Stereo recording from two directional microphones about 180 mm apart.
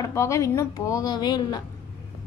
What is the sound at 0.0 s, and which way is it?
A woman's voice, 15° left (ahead or behind).